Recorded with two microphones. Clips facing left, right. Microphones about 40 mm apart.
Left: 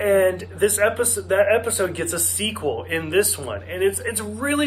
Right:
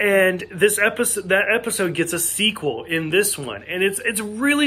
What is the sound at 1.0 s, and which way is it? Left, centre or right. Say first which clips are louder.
Speech: even; right.